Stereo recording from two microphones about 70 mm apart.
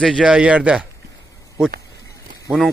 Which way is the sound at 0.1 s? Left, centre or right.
Centre.